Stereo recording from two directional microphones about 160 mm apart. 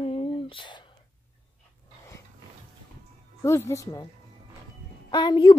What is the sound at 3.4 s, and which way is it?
Speech, 20° left (ahead or behind).